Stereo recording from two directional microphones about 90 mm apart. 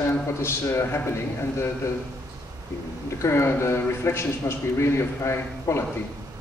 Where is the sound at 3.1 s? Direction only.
30° left (ahead or behind).